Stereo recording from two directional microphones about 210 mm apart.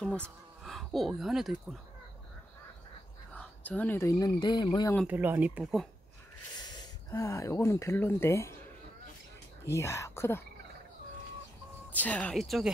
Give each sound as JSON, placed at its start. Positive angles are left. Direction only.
{"t": 0.0, "sound": "speech", "side_deg": 5}
{"t": 3.3, "sound": "speech", "side_deg": 5}
{"t": 5.0, "sound": "speech", "side_deg": -10}
{"t": 6.6, "sound": "speech", "side_deg": 20}
{"t": 9.7, "sound": "speech", "side_deg": 15}
{"t": 11.9, "sound": "a woman's voice", "side_deg": 5}